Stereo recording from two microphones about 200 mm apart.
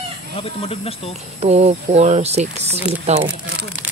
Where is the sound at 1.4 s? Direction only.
30° right (ahead or behind).